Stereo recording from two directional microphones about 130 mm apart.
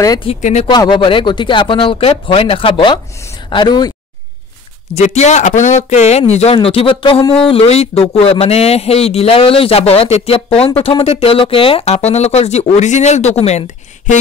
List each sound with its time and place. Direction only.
0.4 s speech: 60° left (ahead or behind)
0.7 s speech: 35° left (ahead or behind)
5.0 s speech: 60° left (ahead or behind)